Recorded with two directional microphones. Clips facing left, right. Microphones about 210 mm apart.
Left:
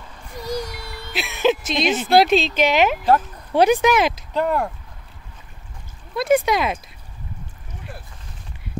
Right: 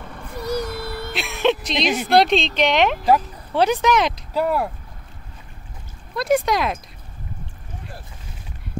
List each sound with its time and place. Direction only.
0.1 s a sound: 55° right (ahead or behind)
1.1 s music: centre (ahead or behind)
2.0 s speech: 5° left (ahead or behind)
4.3 s speech: 5° right (ahead or behind)
6.1 s speech: centre (ahead or behind)